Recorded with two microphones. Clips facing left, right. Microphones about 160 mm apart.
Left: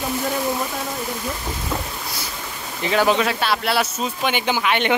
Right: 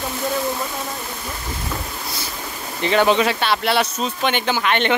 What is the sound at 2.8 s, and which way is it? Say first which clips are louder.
Speech: right 2 dB; 5° left (ahead or behind).